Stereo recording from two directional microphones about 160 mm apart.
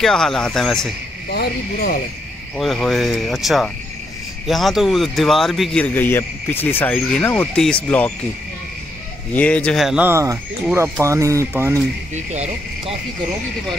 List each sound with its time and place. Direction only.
0.0 s speech: 5° left (ahead or behind)
1.3 s cricket: 70° left (ahead or behind)
2.5 s speech: centre (ahead or behind)
5.9 s speech: 10° left (ahead or behind)
9.3 s speech: 10° left (ahead or behind); by 11.8 s 15° right (ahead or behind)
12.1 s cricket: 45° right (ahead or behind)